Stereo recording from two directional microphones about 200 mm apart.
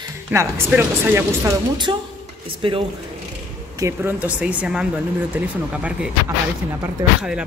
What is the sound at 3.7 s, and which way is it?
Speech, 15° right (ahead or behind).